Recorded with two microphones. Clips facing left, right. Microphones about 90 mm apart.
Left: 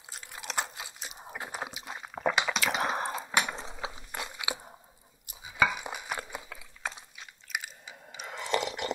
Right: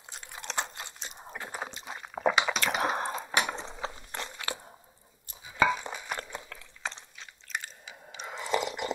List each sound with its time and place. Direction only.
0.1 s crunch: centre (ahead or behind)
1.6 s drip: 5° left (ahead or behind)
3.9 s crunch: 10° left (ahead or behind)
5.3 s a sound: 10° left (ahead or behind)